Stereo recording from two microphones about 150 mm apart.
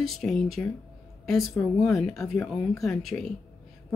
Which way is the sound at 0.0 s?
Centre (ahead or behind).